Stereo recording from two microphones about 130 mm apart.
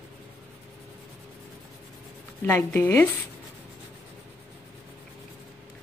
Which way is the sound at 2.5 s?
20° left (ahead or behind).